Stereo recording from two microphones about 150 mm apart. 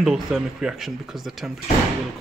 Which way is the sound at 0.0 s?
Centre (ahead or behind).